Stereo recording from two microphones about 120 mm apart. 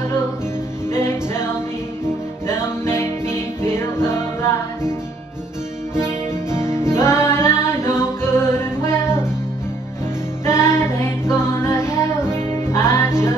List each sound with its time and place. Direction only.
0.9 s music: 20° left (ahead or behind)
6.0 s music: 20° left (ahead or behind)
10.4 s music: 20° left (ahead or behind)